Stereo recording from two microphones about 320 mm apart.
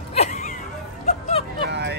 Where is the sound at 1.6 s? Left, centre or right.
Right.